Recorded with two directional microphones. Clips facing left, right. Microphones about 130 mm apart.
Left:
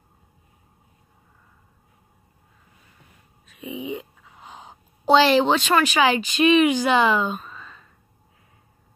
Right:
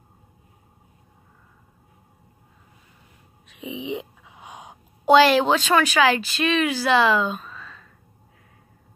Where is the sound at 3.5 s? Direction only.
90° right.